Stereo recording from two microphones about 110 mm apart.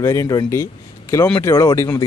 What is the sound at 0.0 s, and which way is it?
Speech, 30° left (ahead or behind).